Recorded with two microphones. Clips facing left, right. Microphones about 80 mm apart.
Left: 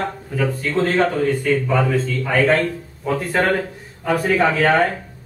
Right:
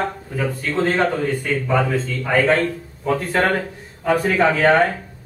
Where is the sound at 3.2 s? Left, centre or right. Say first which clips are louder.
Left 2 dB; centre.